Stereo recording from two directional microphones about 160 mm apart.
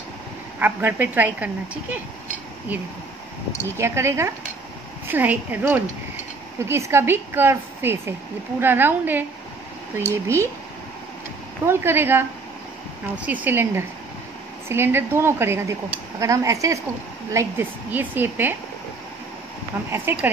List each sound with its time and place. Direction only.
0.6 s a woman's voice: 10° right (ahead or behind)
10.2 s a woman's voice: 15° right (ahead or behind)
11.6 s a woman's voice: 15° right (ahead or behind)
19.9 s a woman's voice: 15° right (ahead or behind)